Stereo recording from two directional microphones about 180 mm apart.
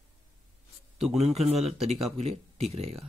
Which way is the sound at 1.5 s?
Centre (ahead or behind).